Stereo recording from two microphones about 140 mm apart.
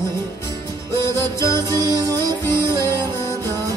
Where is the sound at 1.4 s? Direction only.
30° right (ahead or behind).